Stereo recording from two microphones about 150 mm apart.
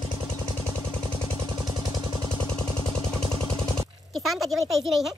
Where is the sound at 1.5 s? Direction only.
25° right (ahead or behind).